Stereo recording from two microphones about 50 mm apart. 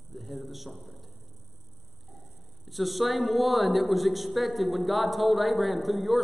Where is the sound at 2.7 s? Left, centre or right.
Centre.